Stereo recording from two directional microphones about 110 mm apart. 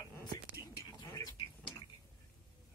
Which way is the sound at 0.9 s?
35° left (ahead or behind).